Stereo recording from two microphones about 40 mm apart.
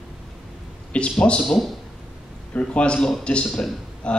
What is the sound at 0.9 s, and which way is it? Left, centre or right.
Speech, left.